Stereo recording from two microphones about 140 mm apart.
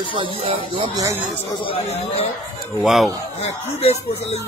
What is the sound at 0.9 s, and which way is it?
Speech, 25° right (ahead or behind).